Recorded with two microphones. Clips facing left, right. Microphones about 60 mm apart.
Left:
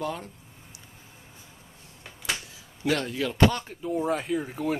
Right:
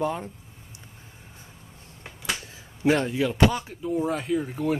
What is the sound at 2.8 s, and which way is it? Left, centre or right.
Speech, right.